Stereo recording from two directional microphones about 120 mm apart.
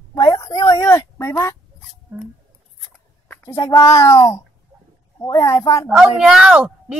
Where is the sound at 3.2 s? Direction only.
20° left (ahead or behind).